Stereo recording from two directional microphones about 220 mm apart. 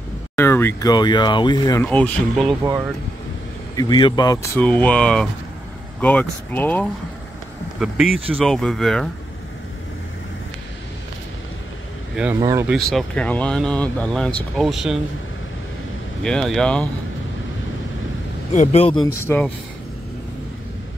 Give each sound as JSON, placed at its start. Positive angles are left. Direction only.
{"t": 0.4, "sound": "speech", "side_deg": 10}
{"t": 1.9, "sound": "speech", "side_deg": 5}
{"t": 3.7, "sound": "speech", "side_deg": 20}
{"t": 12.4, "sound": "speech", "side_deg": -15}
{"t": 12.6, "sound": "speech", "side_deg": 0}
{"t": 16.3, "sound": "speech", "side_deg": 5}
{"t": 18.5, "sound": "speech", "side_deg": 30}
{"t": 19.2, "sound": "speech", "side_deg": 10}